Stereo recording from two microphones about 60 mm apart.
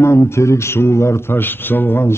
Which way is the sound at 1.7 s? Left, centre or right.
Left.